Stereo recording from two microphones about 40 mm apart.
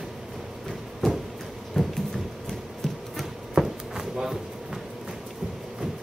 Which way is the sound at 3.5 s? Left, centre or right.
Centre.